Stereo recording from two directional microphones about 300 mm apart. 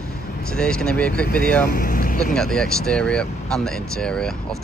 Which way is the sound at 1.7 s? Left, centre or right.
Left.